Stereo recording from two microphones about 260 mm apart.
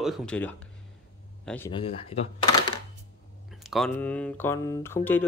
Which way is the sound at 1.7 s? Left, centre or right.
Left.